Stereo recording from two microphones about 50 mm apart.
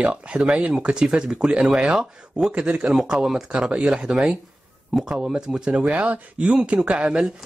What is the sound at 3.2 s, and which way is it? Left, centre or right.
Speech, centre.